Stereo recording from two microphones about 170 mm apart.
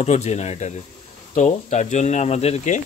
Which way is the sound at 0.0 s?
40° left (ahead or behind).